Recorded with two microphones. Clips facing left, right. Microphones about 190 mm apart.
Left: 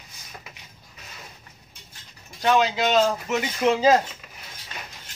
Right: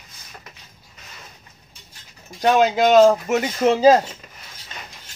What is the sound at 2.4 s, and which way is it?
Speech, 50° right (ahead or behind).